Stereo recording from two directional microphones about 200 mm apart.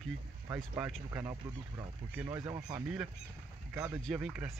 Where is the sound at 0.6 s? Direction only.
5° right (ahead or behind).